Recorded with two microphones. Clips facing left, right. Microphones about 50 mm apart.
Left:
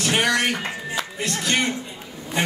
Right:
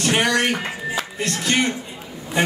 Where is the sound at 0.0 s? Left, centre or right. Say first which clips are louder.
Right 2 dB; centre.